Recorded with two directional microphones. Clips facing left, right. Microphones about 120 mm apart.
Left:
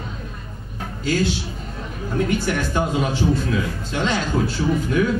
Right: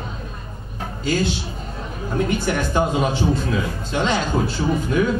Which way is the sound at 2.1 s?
25° right (ahead or behind).